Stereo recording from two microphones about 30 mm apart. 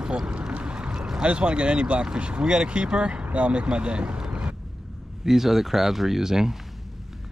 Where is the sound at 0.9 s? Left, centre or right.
Centre.